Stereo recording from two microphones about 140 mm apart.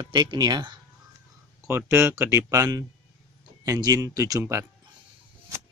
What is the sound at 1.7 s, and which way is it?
Speech, 20° right (ahead or behind).